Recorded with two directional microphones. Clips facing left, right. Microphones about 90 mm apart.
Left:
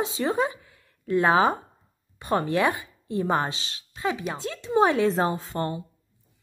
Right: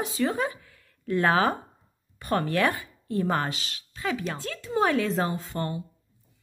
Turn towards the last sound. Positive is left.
turn(degrees=30)  # may be behind; listen again after turning